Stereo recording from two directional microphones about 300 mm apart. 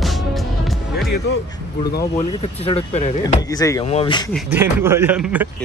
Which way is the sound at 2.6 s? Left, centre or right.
Left.